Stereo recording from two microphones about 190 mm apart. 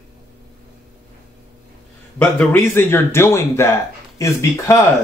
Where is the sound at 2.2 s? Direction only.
10° left (ahead or behind).